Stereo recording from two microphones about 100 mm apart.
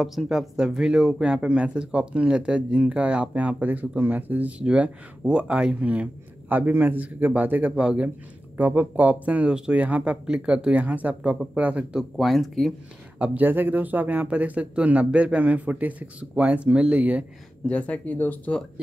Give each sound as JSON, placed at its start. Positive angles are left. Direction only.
{"t": 0.0, "sound": "speech", "side_deg": -5}
{"t": 13.2, "sound": "speech", "side_deg": -15}
{"t": 17.6, "sound": "speech", "side_deg": 10}